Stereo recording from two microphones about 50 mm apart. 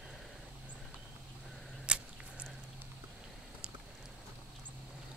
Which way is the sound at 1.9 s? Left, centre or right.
Right.